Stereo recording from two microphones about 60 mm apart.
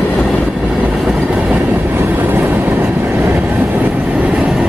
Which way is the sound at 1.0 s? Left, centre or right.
Centre.